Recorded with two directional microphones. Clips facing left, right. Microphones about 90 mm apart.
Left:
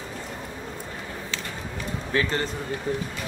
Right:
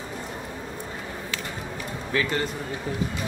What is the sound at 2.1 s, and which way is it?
Speech, 35° left (ahead or behind).